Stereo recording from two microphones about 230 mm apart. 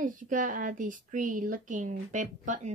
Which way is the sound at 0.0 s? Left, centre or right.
Right.